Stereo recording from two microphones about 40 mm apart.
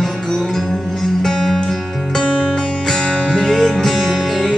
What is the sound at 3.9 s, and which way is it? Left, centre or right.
Music, centre.